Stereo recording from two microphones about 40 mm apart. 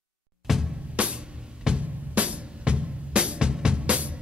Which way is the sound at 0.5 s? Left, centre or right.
Centre.